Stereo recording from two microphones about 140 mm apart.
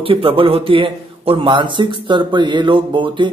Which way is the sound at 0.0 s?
40° right (ahead or behind).